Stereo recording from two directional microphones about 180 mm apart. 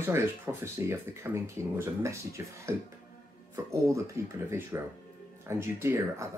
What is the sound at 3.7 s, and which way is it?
Speech, 15° right (ahead or behind).